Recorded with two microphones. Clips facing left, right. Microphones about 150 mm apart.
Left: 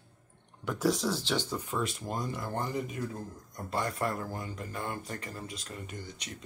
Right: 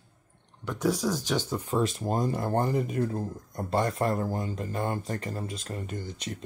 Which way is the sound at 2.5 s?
50° right (ahead or behind).